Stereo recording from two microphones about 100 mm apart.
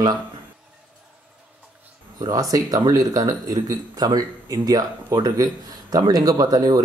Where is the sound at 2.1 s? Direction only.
40° right (ahead or behind).